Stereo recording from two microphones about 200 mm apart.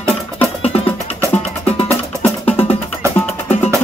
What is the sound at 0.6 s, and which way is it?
Music, 30° left (ahead or behind).